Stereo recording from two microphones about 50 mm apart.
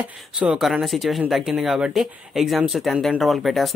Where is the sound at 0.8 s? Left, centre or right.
Centre.